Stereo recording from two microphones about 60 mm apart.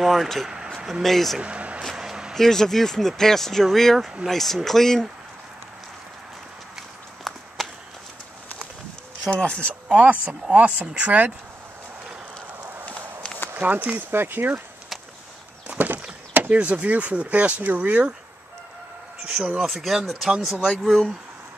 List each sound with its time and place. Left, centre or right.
0.0 s speech: centre
1.4 s a sound: right
1.8 s a sound: centre
2.3 s speech: centre
7.3 s walk: centre
9.4 s speech: centre
9.8 s speech: right
13.5 s speech: right
15.6 s a sound: right
16.3 s speech: right
19.2 s speech: centre
19.6 s speech: centre
20.8 s speech: centre